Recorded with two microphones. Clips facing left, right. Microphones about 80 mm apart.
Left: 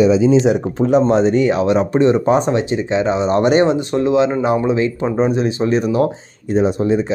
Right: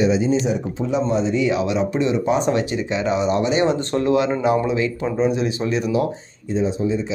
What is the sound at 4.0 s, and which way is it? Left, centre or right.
Speech, left.